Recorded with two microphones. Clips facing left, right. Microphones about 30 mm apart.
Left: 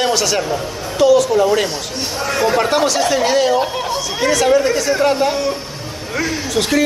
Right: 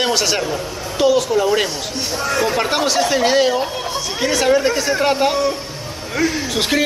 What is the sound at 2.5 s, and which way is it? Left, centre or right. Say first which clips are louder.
Speech: left 2 dB; centre.